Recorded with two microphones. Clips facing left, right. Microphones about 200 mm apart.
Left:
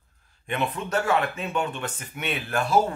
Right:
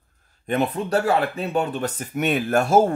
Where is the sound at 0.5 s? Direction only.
35° right (ahead or behind).